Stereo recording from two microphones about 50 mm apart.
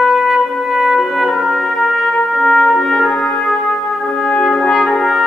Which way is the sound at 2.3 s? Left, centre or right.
Centre.